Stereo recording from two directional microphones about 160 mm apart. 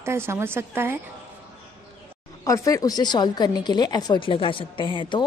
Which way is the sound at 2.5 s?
20° left (ahead or behind).